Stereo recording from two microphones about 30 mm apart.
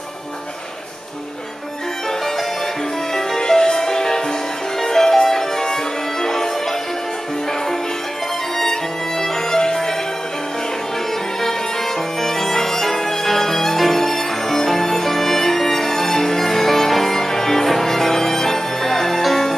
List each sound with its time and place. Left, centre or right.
3.2 s music: centre
9.2 s music: centre
12.2 s music: centre